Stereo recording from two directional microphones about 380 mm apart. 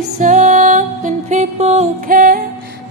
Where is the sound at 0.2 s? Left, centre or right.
Centre.